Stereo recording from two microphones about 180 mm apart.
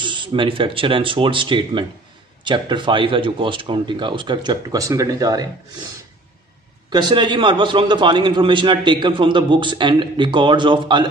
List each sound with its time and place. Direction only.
0.0 s a man's voice: 25° right (ahead or behind)
6.9 s a man's voice: 25° right (ahead or behind)